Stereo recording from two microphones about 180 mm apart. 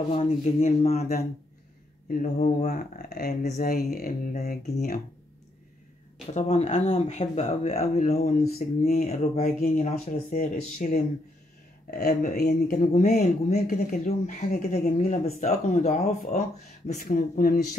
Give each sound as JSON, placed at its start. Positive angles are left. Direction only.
{"t": 0.1, "sound": "speech", "side_deg": 35}
{"t": 2.0, "sound": "speech", "side_deg": 50}
{"t": 2.7, "sound": "speech", "side_deg": 55}
{"t": 6.3, "sound": "speech", "side_deg": 40}
{"t": 10.0, "sound": "speech", "side_deg": 50}
{"t": 12.1, "sound": "speech", "side_deg": 45}
{"t": 12.4, "sound": "speech", "side_deg": 65}
{"t": 12.7, "sound": "speech", "side_deg": 40}
{"t": 13.9, "sound": "speech", "side_deg": 55}
{"t": 14.7, "sound": "speech", "side_deg": 35}